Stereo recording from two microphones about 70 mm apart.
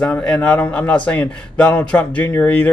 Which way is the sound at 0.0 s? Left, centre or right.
Centre.